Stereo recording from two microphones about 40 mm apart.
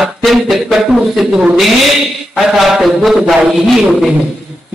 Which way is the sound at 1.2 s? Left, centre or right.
Right.